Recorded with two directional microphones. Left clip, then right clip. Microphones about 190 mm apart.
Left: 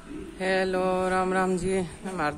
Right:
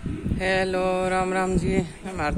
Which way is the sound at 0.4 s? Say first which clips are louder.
Right 2 dB; 5° right (ahead or behind).